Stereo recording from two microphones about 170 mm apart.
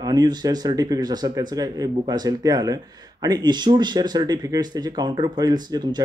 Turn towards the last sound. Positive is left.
turn(degrees=-25)  # may be behind; listen again after turning